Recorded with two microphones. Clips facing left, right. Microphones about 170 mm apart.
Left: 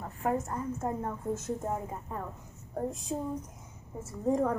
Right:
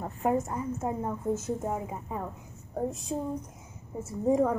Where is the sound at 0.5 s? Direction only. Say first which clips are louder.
Right 2 dB; 5° right (ahead or behind).